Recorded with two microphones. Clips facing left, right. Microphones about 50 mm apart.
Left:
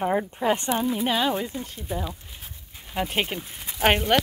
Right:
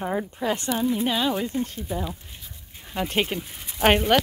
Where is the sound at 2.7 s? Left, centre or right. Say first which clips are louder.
Right 1 dB; centre.